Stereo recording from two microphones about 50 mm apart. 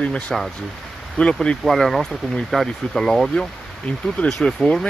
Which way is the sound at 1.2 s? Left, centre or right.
Left.